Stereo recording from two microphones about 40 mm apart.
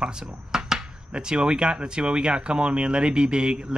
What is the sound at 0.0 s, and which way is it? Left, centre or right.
Speech, right.